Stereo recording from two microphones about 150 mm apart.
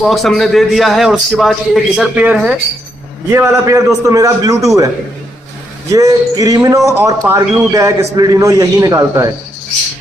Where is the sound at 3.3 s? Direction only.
15° right (ahead or behind).